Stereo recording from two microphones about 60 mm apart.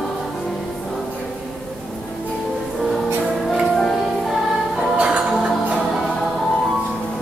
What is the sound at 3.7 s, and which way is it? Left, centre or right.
Music, centre.